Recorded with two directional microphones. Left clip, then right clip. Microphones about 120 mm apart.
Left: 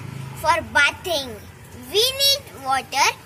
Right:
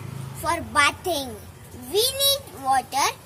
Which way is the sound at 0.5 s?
30° right (ahead or behind).